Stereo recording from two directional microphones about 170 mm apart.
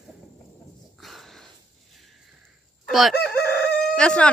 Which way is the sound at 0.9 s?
Centre (ahead or behind).